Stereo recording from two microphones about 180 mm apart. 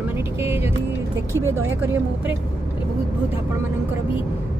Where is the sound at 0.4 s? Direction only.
15° right (ahead or behind).